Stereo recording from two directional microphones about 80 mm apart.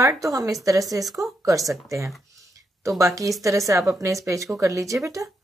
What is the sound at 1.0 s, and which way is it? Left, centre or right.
Speech, centre.